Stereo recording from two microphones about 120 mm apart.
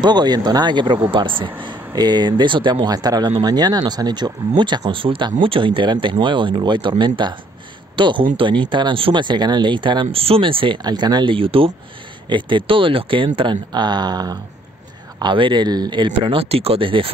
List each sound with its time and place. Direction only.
0.0 s speech: 35° right (ahead or behind)